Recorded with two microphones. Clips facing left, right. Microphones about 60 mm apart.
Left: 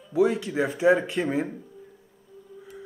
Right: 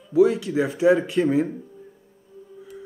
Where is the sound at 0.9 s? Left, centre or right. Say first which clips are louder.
Right 5 dB; centre.